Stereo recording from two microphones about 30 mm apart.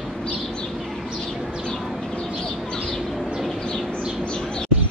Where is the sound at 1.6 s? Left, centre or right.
Left.